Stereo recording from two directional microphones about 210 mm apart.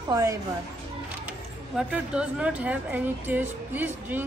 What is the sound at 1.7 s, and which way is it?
Speech, 5° right (ahead or behind).